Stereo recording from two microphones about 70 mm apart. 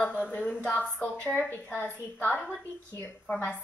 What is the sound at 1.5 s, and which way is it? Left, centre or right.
A woman's voice, left.